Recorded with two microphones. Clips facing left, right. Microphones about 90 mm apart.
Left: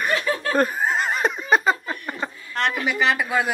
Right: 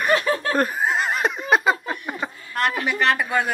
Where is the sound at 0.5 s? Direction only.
5° right (ahead or behind).